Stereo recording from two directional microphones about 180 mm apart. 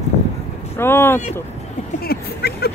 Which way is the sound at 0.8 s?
10° left (ahead or behind).